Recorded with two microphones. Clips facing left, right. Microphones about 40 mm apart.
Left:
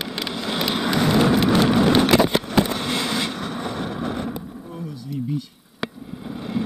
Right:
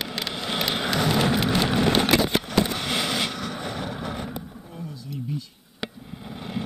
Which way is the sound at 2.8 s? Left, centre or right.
Right.